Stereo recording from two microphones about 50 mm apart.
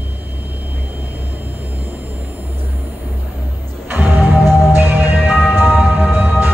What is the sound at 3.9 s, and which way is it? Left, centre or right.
Music, right.